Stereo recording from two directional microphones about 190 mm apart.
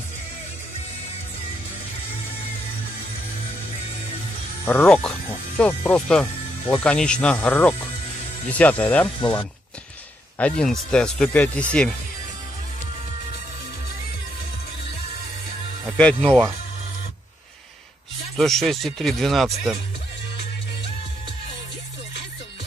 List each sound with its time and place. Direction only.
4.6 s speech: 5° left (ahead or behind)
9.2 s speech: 25° left (ahead or behind)
10.3 s speech: 5° left (ahead or behind)
16.0 s speech: 5° left (ahead or behind)
16.3 s speech: 10° right (ahead or behind)
18.3 s speech: centre (ahead or behind)